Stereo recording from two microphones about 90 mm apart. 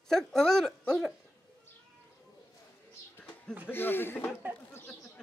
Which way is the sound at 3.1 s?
10° left (ahead or behind).